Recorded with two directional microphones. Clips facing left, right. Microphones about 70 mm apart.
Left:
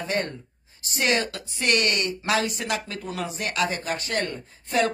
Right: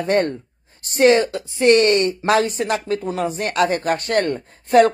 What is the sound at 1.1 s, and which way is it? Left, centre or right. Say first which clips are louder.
Speech: right 10 dB; right.